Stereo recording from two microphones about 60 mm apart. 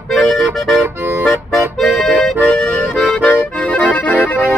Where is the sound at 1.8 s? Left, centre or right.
Centre.